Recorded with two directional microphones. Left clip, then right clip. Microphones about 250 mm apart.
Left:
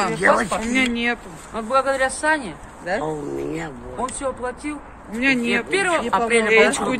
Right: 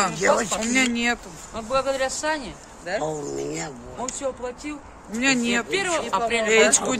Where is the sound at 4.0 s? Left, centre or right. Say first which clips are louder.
Left 4 dB; centre.